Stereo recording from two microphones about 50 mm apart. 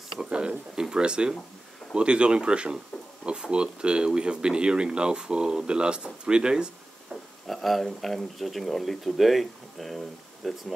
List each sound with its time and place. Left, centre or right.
0.2 s a sound: centre
2.0 s speech: right
7.4 s speech: centre